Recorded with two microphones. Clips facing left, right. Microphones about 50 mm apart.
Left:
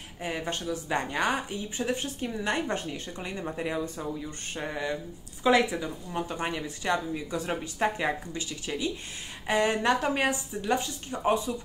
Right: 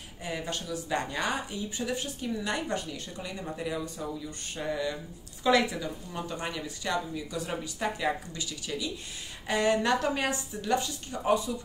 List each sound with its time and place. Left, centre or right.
0.2 s speech: left